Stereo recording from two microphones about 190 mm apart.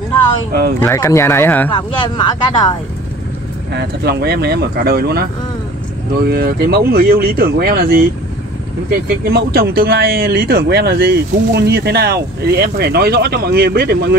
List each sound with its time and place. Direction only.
0.7 s speech: 10° left (ahead or behind)
1.7 s speech: 25° left (ahead or behind)
3.7 s speech: 60° right (ahead or behind)
6.2 s speech: 55° right (ahead or behind)
9.3 s speech: 55° right (ahead or behind)